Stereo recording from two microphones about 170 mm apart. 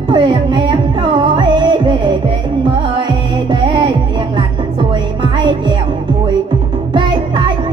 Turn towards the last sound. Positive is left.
turn(degrees=-25)  # may be behind; listen again after turning